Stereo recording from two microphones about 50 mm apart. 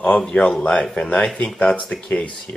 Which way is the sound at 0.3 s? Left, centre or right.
Centre.